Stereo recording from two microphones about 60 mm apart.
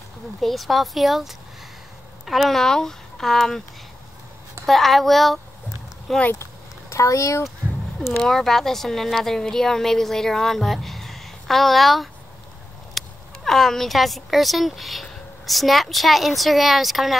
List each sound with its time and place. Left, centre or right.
0.4 s a woman's voice: centre
4.6 s a woman's voice: centre
6.9 s speech: left
8.3 s a woman's voice: centre